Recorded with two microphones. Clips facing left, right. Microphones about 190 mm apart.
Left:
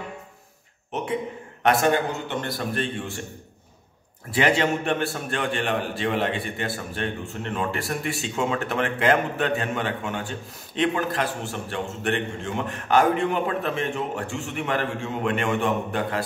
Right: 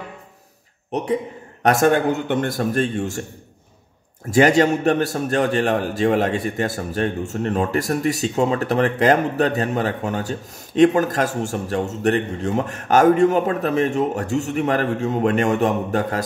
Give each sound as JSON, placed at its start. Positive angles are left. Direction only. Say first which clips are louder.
{"t": 1.6, "sound": "a man's voice", "louder": "right 4 dB", "side_deg": -45}
{"t": 4.3, "sound": "a man's voice", "louder": "right 7 dB", "side_deg": -45}